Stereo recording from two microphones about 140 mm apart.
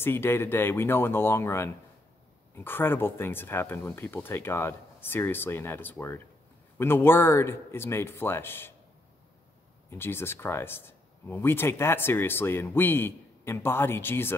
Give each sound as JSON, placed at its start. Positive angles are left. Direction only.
{"t": 0.0, "sound": "speech", "side_deg": 15}
{"t": 9.8, "sound": "speech", "side_deg": 15}